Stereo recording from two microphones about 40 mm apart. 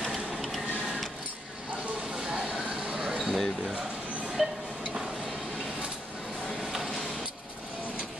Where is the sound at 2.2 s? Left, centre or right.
Centre.